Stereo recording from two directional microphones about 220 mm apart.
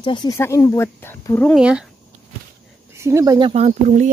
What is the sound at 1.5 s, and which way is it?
Speech, 5° right (ahead or behind).